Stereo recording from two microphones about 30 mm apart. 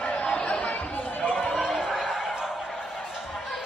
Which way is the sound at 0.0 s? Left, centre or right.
Left.